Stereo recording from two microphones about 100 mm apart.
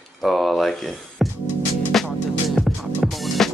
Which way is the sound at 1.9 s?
5° left (ahead or behind).